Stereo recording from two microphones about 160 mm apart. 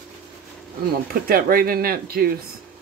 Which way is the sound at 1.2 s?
65° right (ahead or behind).